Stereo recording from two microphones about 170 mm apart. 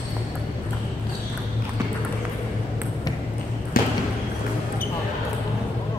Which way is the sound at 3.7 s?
60° left (ahead or behind).